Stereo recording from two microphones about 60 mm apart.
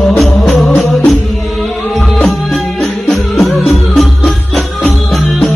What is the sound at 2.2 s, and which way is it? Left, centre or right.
Music, centre.